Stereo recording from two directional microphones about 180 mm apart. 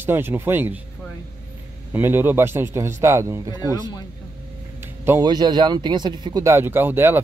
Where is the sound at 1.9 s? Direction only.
10° right (ahead or behind).